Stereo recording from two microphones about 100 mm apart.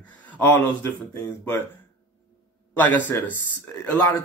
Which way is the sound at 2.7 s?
20° left (ahead or behind).